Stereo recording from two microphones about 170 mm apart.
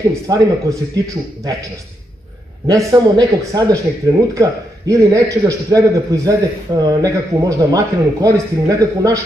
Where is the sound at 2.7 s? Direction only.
20° right (ahead or behind).